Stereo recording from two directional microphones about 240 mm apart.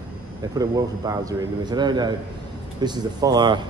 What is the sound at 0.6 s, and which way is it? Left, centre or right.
Speech, centre.